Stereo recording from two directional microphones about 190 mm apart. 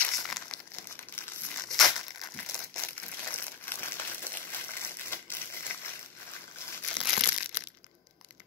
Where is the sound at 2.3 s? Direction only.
10° left (ahead or behind).